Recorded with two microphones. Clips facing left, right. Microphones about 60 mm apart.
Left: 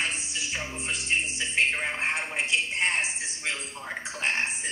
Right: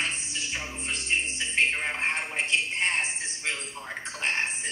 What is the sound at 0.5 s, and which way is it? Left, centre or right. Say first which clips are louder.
Music: left 2 dB; centre.